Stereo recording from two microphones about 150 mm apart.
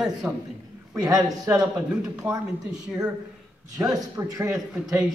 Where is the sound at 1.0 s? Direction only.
25° right (ahead or behind).